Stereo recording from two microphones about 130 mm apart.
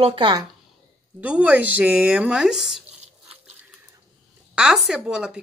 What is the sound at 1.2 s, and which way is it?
Speech, 10° right (ahead or behind).